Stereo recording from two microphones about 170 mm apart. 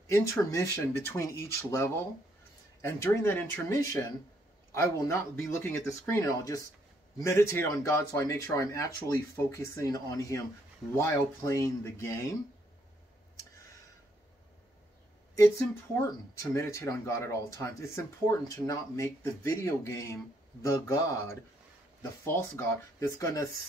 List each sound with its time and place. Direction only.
0.1 s speech: 20° left (ahead or behind)
15.3 s speech: 15° left (ahead or behind)